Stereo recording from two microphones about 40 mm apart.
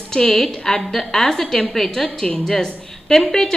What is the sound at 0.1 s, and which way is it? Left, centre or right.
A woman's voice, centre.